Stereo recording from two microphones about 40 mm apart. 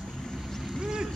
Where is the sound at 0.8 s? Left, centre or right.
Centre.